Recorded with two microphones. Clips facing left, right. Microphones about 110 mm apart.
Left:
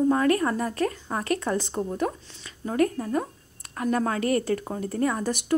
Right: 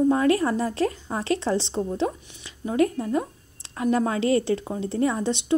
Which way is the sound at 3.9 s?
25° right (ahead or behind).